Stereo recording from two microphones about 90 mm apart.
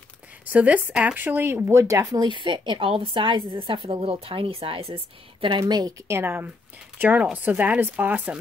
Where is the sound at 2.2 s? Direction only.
60° right (ahead or behind); by 5.6 s 80° right.